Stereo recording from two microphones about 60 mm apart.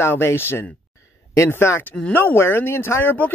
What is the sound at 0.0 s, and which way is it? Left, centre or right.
Speech, left.